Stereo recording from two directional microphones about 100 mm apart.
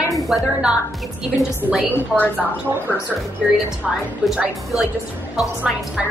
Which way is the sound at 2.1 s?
15° right (ahead or behind).